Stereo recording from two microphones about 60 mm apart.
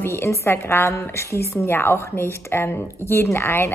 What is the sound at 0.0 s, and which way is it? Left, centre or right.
A woman's voice, left.